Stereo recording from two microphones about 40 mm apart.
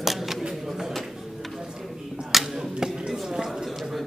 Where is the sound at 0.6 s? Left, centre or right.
Centre.